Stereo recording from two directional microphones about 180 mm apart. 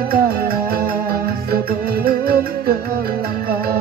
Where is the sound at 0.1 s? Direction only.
55° right (ahead or behind).